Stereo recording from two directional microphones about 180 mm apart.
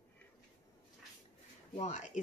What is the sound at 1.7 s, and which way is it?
Speech, 40° left (ahead or behind).